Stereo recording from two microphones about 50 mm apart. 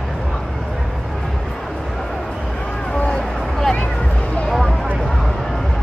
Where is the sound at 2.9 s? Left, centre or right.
Centre.